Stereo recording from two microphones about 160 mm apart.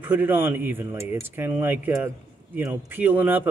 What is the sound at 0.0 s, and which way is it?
A man's voice, 10° right (ahead or behind).